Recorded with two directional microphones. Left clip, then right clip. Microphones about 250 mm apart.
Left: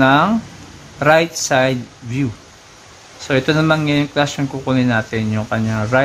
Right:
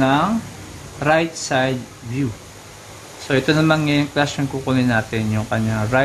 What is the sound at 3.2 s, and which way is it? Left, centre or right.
Speech, centre.